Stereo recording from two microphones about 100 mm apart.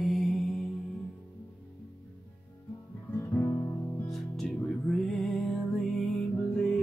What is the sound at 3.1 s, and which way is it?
Guitar, 25° left (ahead or behind).